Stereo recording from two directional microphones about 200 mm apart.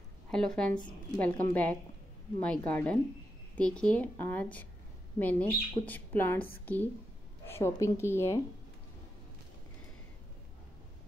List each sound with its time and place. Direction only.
0.3 s a woman's voice: 5° left (ahead or behind)